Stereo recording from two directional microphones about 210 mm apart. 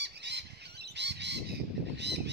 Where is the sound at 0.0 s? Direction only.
55° right (ahead or behind).